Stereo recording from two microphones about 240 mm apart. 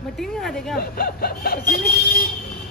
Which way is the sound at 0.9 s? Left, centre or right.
Left.